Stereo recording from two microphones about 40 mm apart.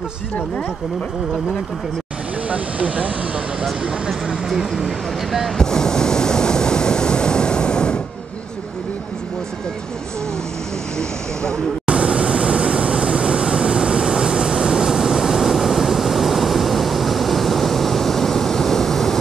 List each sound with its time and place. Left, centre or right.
2.5 s speech: right
4.5 s speech: centre
5.6 s waves: centre
11.8 s vehicle: right; by 19.1 s centre